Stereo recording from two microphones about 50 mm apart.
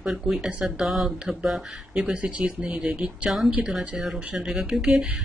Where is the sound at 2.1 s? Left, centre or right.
Right.